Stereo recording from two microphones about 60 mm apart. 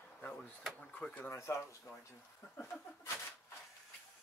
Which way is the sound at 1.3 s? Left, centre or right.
Left.